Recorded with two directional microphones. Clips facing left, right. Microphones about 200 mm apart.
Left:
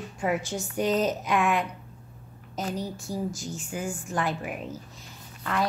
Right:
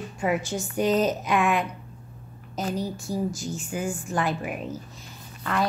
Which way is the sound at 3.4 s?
5° right (ahead or behind).